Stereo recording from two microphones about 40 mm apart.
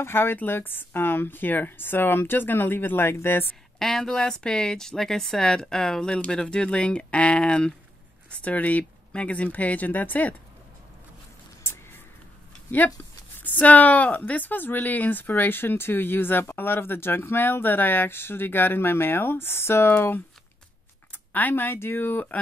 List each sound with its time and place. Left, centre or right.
0.0 s speech: left
3.8 s speech: centre
8.3 s speech: left
12.7 s speech: left
21.1 s speech: left